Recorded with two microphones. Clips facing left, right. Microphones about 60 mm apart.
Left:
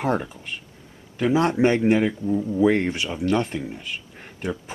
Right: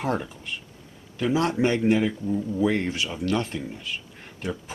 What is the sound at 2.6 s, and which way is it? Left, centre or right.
Speech, left.